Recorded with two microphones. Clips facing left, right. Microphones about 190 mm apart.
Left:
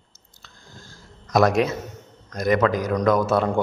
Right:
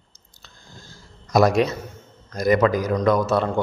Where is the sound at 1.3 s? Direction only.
Centre (ahead or behind).